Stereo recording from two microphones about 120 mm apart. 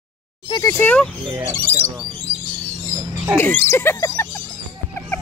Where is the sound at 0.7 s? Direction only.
15° left (ahead or behind).